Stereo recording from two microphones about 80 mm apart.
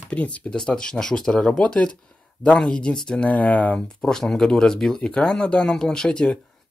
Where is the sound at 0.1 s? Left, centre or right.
Centre.